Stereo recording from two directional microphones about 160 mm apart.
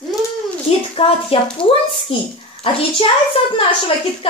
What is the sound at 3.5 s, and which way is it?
Speech, 35° left (ahead or behind).